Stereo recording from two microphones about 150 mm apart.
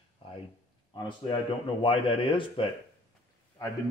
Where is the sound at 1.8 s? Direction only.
35° left (ahead or behind).